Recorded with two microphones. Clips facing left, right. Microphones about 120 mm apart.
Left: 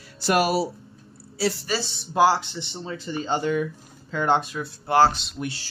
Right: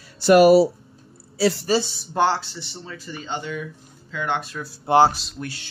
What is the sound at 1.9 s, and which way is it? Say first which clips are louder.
Speech: left 2 dB; 5° left (ahead or behind).